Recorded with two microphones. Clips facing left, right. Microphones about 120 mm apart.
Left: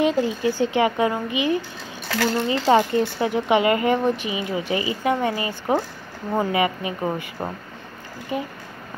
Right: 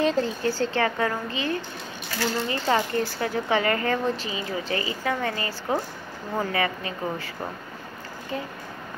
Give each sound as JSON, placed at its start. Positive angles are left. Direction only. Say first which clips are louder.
{"t": 0.0, "sound": "speech", "louder": "left 3 dB", "side_deg": 10}